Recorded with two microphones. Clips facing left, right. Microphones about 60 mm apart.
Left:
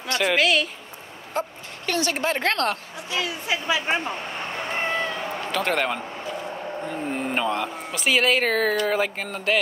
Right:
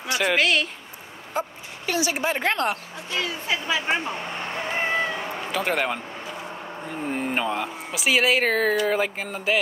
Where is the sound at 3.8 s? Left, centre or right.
Centre.